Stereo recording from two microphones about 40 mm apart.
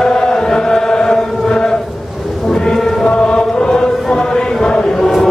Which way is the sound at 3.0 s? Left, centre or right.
Left.